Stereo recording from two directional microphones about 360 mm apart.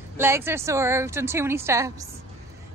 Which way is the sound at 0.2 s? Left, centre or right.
Centre.